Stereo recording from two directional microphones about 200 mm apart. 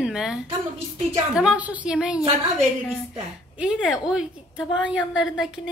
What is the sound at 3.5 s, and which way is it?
A woman's voice, 5° right (ahead or behind).